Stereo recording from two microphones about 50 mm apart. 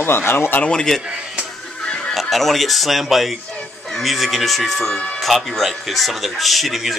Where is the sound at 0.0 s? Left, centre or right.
Left.